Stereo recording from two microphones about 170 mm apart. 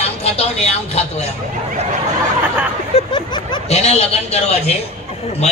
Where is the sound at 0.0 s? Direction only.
35° left (ahead or behind).